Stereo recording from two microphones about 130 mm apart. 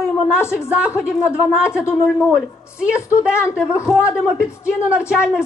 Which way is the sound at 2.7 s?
10° right (ahead or behind).